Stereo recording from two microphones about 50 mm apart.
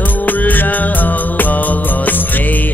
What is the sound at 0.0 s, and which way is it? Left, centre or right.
Music, left.